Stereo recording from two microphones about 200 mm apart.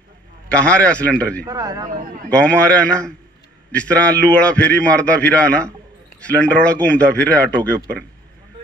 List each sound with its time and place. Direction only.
0.5 s a man's voice: 5° left (ahead or behind)
1.4 s speech: 20° right (ahead or behind)
2.2 s a man's voice: 5° left (ahead or behind)